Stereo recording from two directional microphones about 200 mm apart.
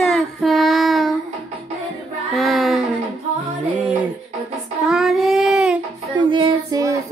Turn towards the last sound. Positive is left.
turn(degrees=-20)  # may be behind; listen again after turning